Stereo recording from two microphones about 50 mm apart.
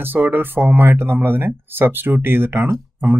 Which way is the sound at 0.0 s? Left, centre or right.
Right.